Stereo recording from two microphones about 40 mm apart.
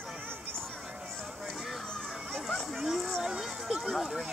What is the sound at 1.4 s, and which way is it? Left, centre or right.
Speech, centre.